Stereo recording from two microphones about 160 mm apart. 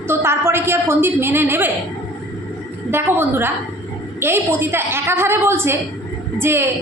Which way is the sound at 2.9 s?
15° right (ahead or behind).